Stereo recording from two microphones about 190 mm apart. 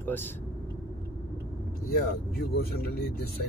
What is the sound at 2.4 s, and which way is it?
Speech, 55° left (ahead or behind).